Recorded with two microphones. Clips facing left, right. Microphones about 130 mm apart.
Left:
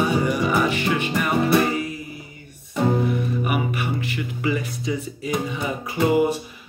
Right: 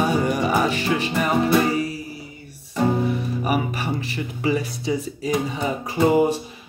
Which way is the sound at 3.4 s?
35° right (ahead or behind).